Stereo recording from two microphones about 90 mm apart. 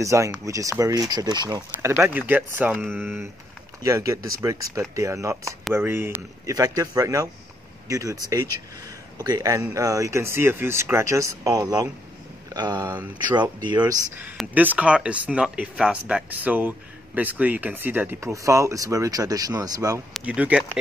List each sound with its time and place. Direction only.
0.0 s speech: 35° right (ahead or behind); by 1.6 s 50° right (ahead or behind)
1.8 s speech: 30° right (ahead or behind)
2.8 s speech: 5° left (ahead or behind)
3.8 s a man's voice: 35° right (ahead or behind)
14.5 s a man's voice: 20° right (ahead or behind)
18.3 s speech: 35° right (ahead or behind)
20.2 s a man's voice: 15° right (ahead or behind)